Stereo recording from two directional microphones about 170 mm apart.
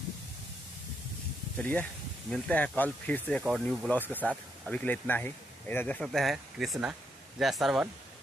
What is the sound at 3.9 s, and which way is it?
Speech, 10° left (ahead or behind).